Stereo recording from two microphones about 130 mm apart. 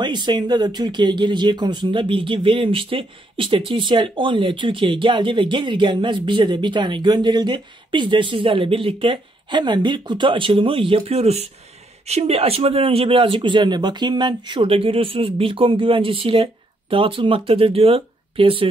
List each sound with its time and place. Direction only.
0.0 s speech: 35° right (ahead or behind)